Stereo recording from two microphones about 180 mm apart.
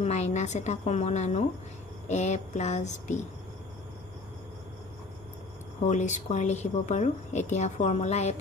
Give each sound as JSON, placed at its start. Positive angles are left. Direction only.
{"t": 0.0, "sound": "a woman's voice", "side_deg": 40}
{"t": 5.9, "sound": "a woman's voice", "side_deg": 40}